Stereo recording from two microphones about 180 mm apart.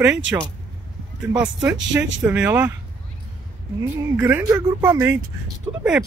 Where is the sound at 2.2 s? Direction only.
10° right (ahead or behind).